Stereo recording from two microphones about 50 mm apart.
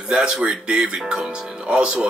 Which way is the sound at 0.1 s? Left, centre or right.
Centre.